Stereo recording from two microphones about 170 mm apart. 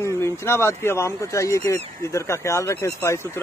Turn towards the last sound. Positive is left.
turn(degrees=15)  # may be behind; listen again after turning